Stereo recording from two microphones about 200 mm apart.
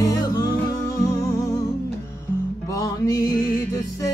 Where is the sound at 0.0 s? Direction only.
20° left (ahead or behind).